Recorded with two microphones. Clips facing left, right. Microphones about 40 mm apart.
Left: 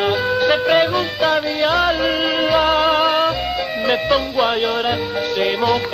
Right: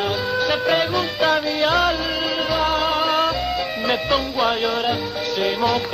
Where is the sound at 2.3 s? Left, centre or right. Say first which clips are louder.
Left 4 dB; left.